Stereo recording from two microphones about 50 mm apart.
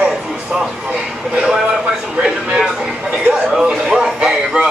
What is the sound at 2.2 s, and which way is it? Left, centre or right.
Speech, centre.